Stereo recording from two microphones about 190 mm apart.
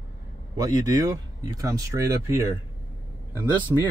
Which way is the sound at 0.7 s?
20° right (ahead or behind).